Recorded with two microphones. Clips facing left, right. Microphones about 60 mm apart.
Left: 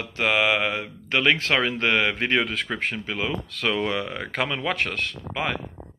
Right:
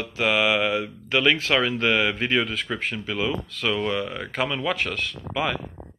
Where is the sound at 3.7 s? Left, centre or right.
Left.